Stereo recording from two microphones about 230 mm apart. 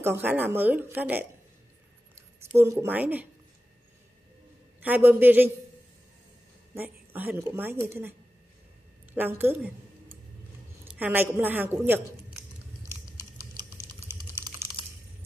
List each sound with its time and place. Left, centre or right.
0.0 s speech: centre
2.5 s speech: centre
4.8 s speech: centre
6.7 s speech: centre
10.9 s a sound: centre
14.0 s typing: centre